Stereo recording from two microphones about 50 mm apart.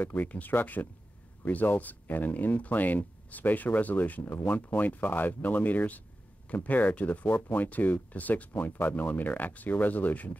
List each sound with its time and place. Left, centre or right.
0.0 s speech: left